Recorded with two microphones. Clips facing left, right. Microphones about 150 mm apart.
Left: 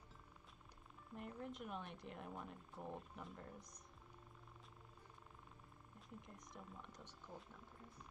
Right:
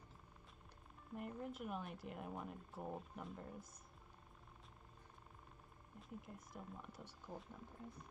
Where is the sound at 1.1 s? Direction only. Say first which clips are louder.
Right 3 dB; 5° right (ahead or behind).